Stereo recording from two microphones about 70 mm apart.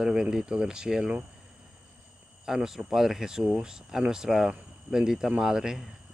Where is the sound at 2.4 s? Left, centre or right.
Centre.